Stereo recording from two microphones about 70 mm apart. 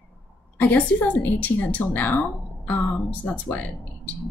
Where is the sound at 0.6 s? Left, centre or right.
Left.